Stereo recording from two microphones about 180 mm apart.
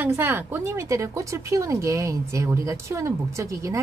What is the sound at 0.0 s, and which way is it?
Speech, 10° right (ahead or behind).